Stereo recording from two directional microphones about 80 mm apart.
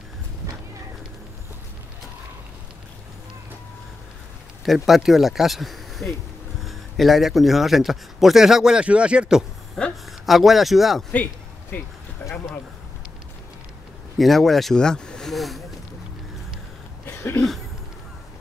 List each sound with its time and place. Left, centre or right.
4.6 s a man's voice: centre
9.8 s a man's voice: centre
11.7 s speech: left
14.1 s a man's voice: centre
17.0 s cough: left